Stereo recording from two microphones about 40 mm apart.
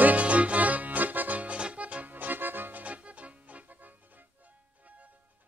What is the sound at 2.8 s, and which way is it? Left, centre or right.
Music, right.